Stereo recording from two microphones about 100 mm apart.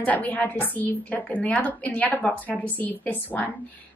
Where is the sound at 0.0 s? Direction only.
15° left (ahead or behind).